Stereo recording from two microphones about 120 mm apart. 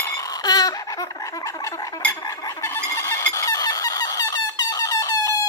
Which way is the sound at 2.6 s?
25° left (ahead or behind).